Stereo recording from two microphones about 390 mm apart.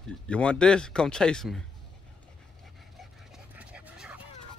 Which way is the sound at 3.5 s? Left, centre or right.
Centre.